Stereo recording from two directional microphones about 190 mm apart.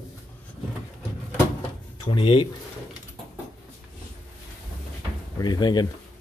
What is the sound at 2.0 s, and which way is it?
Speech, 25° left (ahead or behind).